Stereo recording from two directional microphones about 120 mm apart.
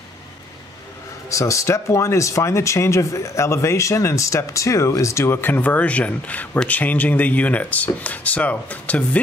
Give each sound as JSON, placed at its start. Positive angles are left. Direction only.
{"t": 1.3, "sound": "speech", "side_deg": 25}